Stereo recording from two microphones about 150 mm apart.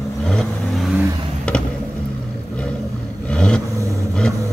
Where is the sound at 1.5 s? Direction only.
5° left (ahead or behind).